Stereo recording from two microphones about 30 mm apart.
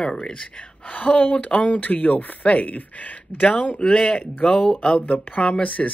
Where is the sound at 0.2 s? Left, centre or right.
Left.